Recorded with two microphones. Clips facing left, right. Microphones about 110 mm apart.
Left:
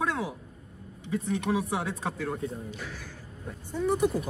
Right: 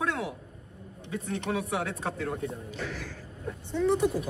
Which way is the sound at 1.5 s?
25° left (ahead or behind).